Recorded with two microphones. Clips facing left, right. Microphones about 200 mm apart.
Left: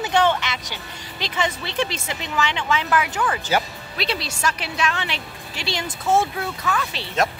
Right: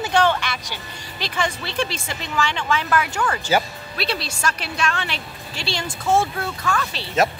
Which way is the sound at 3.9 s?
20° left (ahead or behind).